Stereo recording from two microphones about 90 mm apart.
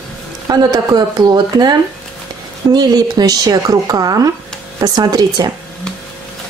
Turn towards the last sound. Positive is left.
turn(degrees=-50)  # may be behind; listen again after turning